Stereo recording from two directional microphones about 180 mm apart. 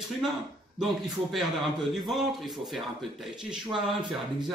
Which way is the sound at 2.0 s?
Centre (ahead or behind).